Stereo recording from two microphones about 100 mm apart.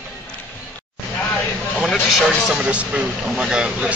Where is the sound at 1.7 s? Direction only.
Centre (ahead or behind).